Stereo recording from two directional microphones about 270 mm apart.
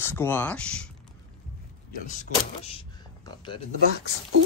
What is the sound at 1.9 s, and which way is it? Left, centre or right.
Speech, left.